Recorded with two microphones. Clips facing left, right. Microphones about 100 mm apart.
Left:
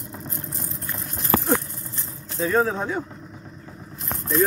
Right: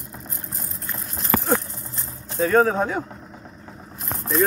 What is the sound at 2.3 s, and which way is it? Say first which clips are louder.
Speech: right 4 dB; 50° right (ahead or behind).